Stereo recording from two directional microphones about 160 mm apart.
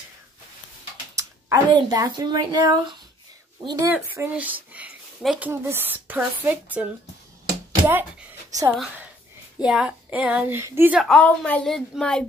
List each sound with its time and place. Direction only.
1.1 s speech: 25° right (ahead or behind)
3.9 s speech: 10° right (ahead or behind)
4.7 s a sound: 5° right (ahead or behind)
5.5 s speech: 15° right (ahead or behind)
8.5 s speech: 20° right (ahead or behind)
9.6 s speech: 5° right (ahead or behind)
11.0 s a woman's voice: 5° left (ahead or behind)